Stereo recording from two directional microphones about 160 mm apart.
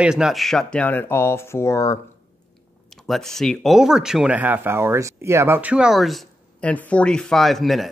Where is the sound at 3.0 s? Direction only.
Centre (ahead or behind).